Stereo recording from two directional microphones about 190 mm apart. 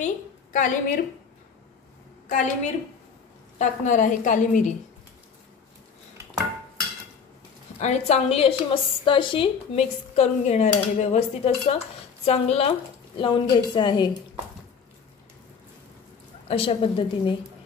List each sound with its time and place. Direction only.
0.0 s a woman's voice: 45° left (ahead or behind)
2.2 s a woman's voice: 45° left (ahead or behind)
7.8 s a woman's voice: 35° left (ahead or behind)
16.4 s a woman's voice: 30° left (ahead or behind)